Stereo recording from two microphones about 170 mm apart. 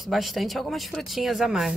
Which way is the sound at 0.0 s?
Centre (ahead or behind).